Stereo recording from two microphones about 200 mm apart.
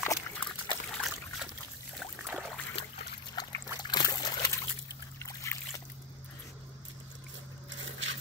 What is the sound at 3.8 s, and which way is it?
Trickle, 20° left (ahead or behind).